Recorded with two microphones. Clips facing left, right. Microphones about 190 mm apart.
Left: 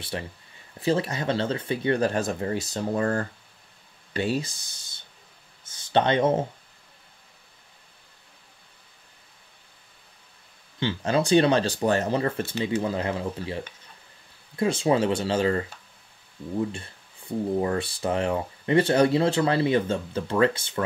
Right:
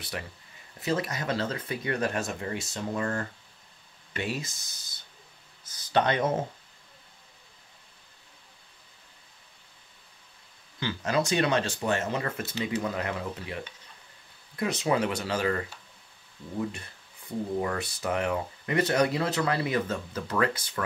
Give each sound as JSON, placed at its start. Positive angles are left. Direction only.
{"t": 0.7, "sound": "speech", "side_deg": 30}
{"t": 5.6, "sound": "a sound", "side_deg": 25}
{"t": 10.8, "sound": "speech", "side_deg": 30}
{"t": 16.7, "sound": "speech", "side_deg": 30}